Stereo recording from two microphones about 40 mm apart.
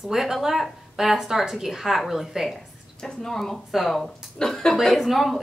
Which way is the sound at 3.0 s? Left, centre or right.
Centre.